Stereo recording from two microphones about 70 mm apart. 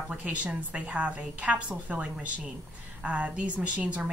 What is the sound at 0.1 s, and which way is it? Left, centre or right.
A woman's voice, centre.